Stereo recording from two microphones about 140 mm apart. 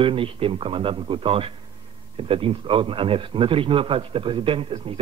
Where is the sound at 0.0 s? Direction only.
40° right (ahead or behind).